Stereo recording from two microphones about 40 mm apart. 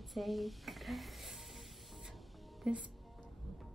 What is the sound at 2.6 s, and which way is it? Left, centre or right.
Speech, right.